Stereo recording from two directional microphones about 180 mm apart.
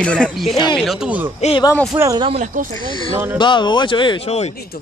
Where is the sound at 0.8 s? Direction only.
Centre (ahead or behind).